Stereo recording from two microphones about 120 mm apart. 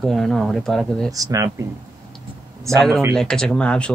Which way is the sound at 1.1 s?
30° right (ahead or behind).